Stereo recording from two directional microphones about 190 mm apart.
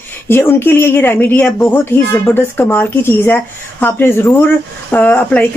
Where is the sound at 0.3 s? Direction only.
10° left (ahead or behind).